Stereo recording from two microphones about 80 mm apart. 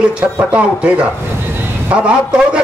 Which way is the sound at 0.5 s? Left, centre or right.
Centre.